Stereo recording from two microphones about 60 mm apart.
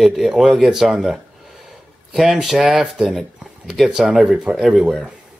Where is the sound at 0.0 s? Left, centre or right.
Centre.